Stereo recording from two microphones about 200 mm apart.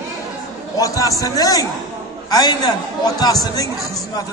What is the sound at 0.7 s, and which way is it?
A man's voice, 15° left (ahead or behind).